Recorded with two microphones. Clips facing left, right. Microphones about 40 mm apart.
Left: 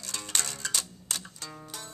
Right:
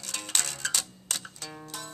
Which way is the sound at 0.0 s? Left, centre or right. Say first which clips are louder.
Right 1 dB; right.